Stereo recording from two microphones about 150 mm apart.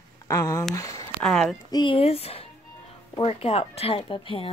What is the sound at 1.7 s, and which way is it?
Speech, 35° left (ahead or behind).